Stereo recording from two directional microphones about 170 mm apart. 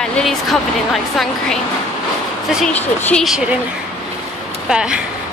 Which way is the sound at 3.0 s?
10° left (ahead or behind).